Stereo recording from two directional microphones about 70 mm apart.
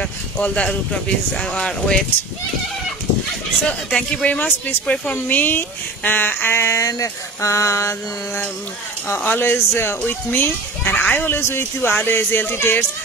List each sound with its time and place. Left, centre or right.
0.0 s speech: centre
3.6 s a child's voice: centre
4.9 s speech: centre
5.3 s a child's voice: left
6.8 s speech: left
9.0 s a child's voice: left
11.3 s speech: left